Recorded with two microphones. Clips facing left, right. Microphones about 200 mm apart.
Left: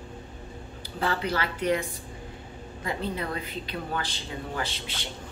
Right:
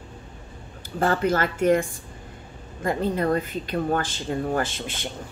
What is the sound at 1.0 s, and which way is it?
Speech, 50° right (ahead or behind).